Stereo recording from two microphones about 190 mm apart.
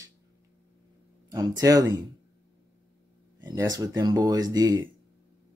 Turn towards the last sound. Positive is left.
turn(degrees=-20)  # may be behind; listen again after turning